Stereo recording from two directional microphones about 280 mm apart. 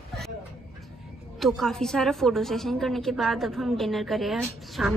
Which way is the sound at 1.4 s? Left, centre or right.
Centre.